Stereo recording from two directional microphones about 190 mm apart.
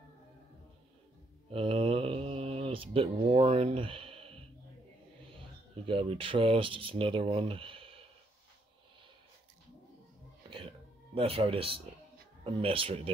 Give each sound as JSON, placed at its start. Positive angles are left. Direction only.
{"t": 1.5, "sound": "mantra", "side_deg": -30}
{"t": 5.9, "sound": "speech", "side_deg": -30}
{"t": 11.1, "sound": "speech", "side_deg": -30}